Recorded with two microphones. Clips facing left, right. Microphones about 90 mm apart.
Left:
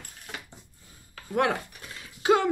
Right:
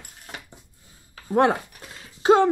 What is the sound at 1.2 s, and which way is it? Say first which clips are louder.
Speech: right 6 dB; 30° right (ahead or behind).